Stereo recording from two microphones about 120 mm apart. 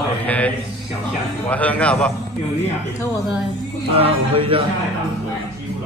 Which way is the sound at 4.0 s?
50° right (ahead or behind).